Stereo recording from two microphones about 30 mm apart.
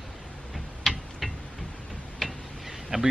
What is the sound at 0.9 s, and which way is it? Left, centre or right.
Tick-tock, centre.